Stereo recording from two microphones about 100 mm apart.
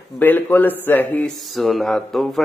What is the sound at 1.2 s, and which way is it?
Mantra, centre (ahead or behind).